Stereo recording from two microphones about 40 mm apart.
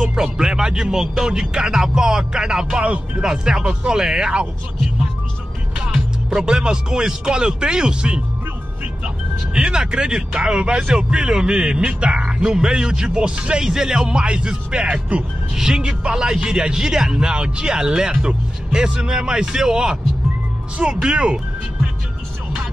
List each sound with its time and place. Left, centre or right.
0.0 s a man's voice: centre
5.9 s a man's voice: centre